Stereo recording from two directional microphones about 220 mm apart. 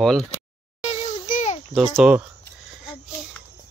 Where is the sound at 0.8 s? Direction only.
30° left (ahead or behind).